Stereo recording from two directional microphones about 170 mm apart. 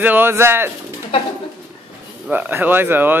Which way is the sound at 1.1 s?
30° left (ahead or behind).